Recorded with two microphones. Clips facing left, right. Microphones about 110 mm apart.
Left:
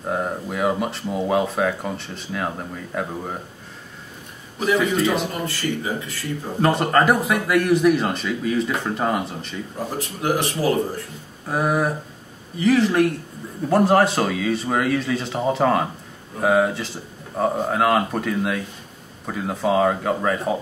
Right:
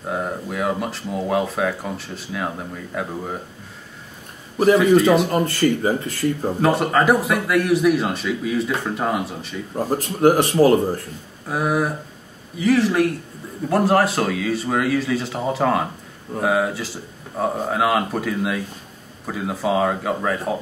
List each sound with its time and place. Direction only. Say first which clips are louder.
0.0 s speech: left 1 dB; centre (ahead or behind)
4.7 s speech: right 5 dB; centre (ahead or behind)
5.3 s speech: right 7 dB; 45° right (ahead or behind)
6.6 s speech: even; centre (ahead or behind)
9.8 s speech: right 8 dB; 45° right (ahead or behind)
11.4 s speech: even; centre (ahead or behind)